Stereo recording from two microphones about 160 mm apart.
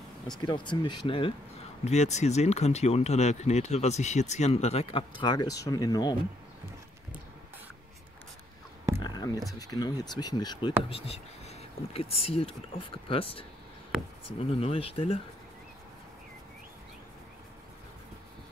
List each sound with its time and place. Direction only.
0.4 s speech: 30° left (ahead or behind)
1.9 s speech: 45° left (ahead or behind); by 6.1 s 25° left (ahead or behind)
9.0 s a sound: 25° left (ahead or behind)
9.6 s speech: 25° left (ahead or behind)
10.9 s speech: 35° left (ahead or behind)